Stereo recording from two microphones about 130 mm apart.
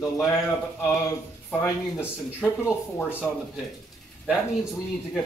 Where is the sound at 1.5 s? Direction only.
10° left (ahead or behind).